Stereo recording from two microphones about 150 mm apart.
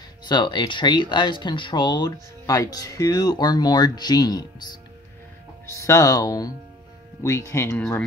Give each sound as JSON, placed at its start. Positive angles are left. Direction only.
{"t": 0.3, "sound": "speech", "side_deg": 30}
{"t": 5.7, "sound": "speech", "side_deg": 20}